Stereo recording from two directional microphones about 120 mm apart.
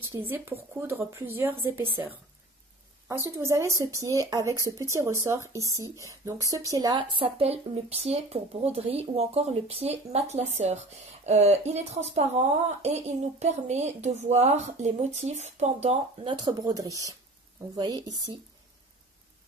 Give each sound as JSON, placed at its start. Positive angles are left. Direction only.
{"t": 0.1, "sound": "speech", "side_deg": -30}
{"t": 0.7, "sound": "speech", "side_deg": -20}
{"t": 3.3, "sound": "speech", "side_deg": -25}
{"t": 13.4, "sound": "speech", "side_deg": -70}
{"t": 16.3, "sound": "speech", "side_deg": -40}